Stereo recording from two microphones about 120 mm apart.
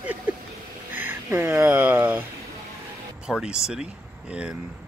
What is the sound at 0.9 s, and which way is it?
Speech, 20° right (ahead or behind).